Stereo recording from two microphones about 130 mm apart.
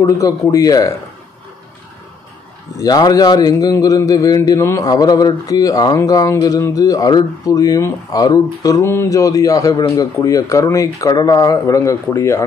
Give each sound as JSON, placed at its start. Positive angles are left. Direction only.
{"t": 0.0, "sound": "speech", "side_deg": 25}
{"t": 2.8, "sound": "speech", "side_deg": 30}